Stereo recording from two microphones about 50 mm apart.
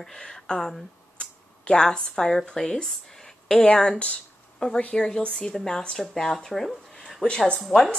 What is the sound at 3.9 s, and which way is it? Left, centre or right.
Speech, left.